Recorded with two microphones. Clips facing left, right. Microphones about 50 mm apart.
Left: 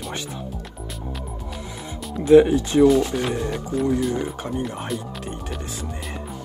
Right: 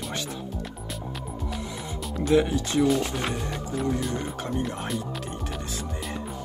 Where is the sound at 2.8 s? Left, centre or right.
Centre.